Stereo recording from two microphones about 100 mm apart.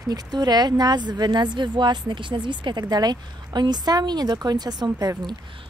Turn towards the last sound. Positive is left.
turn(degrees=-40)  # may be behind; listen again after turning